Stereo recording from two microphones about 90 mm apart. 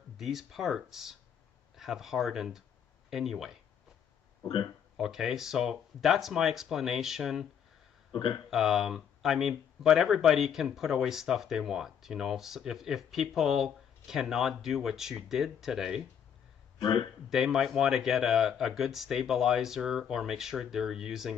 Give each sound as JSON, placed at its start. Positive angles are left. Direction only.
{"t": 0.2, "sound": "speech", "side_deg": -5}
{"t": 4.9, "sound": "speech", "side_deg": -5}
{"t": 8.1, "sound": "speech", "side_deg": 60}
{"t": 8.5, "sound": "speech", "side_deg": -5}
{"t": 16.8, "sound": "speech", "side_deg": 70}
{"t": 17.3, "sound": "speech", "side_deg": -5}